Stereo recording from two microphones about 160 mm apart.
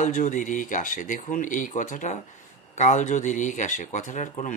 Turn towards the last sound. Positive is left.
turn(degrees=50)  # may be behind; listen again after turning